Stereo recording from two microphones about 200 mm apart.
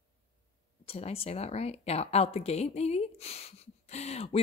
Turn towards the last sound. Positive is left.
turn(degrees=30)  # may be behind; listen again after turning